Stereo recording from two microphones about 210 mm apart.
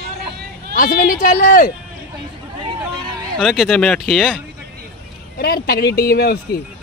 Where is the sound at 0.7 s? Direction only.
40° left (ahead or behind).